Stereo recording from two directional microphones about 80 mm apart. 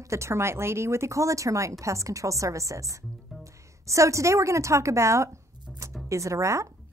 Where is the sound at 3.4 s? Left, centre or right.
Right.